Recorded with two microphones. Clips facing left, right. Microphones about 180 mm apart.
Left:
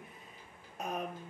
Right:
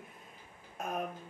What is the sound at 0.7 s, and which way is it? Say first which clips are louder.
Speech: right 1 dB; centre (ahead or behind).